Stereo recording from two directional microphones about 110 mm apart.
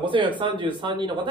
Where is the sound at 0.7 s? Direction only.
45° right (ahead or behind).